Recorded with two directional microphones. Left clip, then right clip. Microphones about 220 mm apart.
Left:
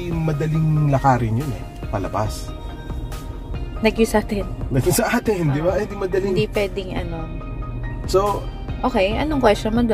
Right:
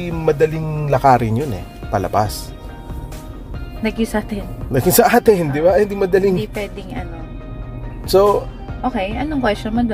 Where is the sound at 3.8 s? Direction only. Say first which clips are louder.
Left 3 dB; 20° left (ahead or behind).